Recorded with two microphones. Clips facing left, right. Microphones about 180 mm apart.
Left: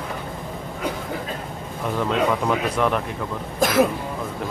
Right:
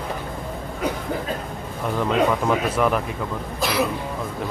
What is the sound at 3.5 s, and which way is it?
Speech, 45° left (ahead or behind).